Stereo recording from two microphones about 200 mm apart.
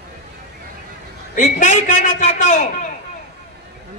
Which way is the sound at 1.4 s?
35° left (ahead or behind).